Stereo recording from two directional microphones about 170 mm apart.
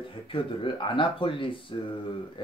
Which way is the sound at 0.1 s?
30° left (ahead or behind).